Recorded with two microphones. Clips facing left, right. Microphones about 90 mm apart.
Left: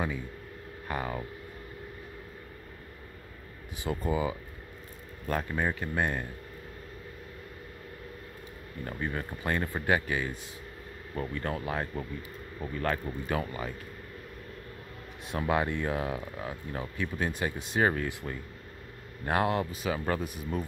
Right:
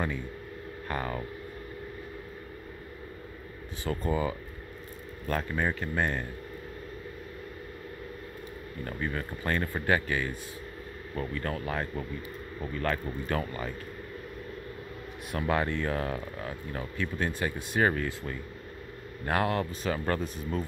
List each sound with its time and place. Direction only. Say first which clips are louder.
0.8 s speech: even; 10° left (ahead or behind)
3.8 s speech: even; 20° left (ahead or behind)
8.8 s speech: even; 20° left (ahead or behind)
13.3 s speech: even; 15° left (ahead or behind)
15.3 s speech: even; 15° left (ahead or behind)